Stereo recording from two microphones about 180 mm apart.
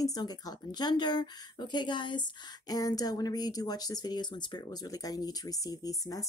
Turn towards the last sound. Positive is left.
turn(degrees=20)  # may be behind; listen again after turning